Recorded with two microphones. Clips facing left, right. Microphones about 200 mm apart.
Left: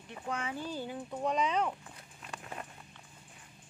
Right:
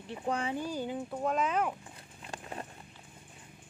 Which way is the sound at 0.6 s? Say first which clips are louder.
Right 4 dB; 15° right (ahead or behind).